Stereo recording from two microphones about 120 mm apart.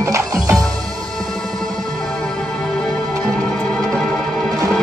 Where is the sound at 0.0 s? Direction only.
25° right (ahead or behind).